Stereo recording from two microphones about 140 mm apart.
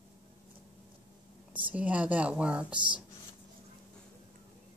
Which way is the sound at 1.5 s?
10° right (ahead or behind).